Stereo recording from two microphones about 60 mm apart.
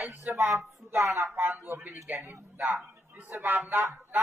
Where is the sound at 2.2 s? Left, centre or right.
Right.